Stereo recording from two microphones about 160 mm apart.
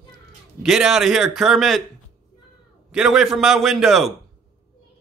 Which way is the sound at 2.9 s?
5° right (ahead or behind).